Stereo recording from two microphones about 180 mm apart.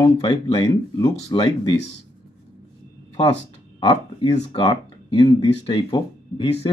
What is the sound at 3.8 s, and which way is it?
Speech, 30° left (ahead or behind).